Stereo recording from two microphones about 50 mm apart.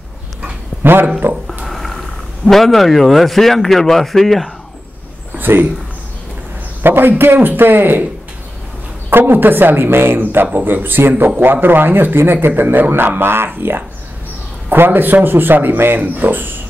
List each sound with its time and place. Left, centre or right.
0.8 s speech: right
1.3 s a sound: centre
1.7 s a sound: centre
2.5 s speech: centre
5.4 s speech: right
6.8 s speech: right
9.1 s a man's voice: right